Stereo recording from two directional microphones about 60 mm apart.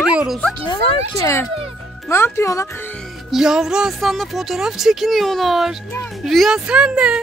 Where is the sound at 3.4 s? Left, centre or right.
Centre.